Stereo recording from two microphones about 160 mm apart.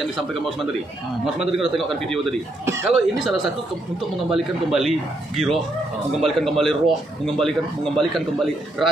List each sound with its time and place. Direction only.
0.0 s speech: centre (ahead or behind)